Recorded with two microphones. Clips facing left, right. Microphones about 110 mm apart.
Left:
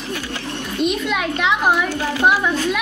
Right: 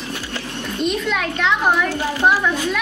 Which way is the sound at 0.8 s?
5° left (ahead or behind).